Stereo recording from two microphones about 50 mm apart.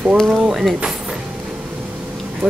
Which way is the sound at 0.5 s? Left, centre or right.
Centre.